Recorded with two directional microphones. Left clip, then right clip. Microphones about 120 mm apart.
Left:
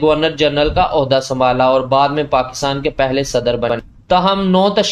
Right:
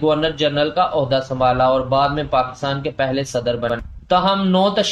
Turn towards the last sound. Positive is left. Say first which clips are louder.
# left 3 dB
turn(degrees=40)  # may be behind; listen again after turning